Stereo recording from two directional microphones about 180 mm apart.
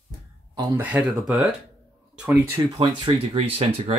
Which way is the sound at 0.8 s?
10° right (ahead or behind).